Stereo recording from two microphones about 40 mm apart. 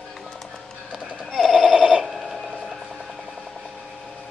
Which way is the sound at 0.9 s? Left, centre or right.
Centre.